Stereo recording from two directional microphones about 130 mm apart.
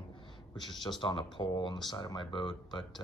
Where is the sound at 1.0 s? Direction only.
40° left (ahead or behind).